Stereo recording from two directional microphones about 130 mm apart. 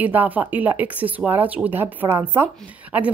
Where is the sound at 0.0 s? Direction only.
15° right (ahead or behind).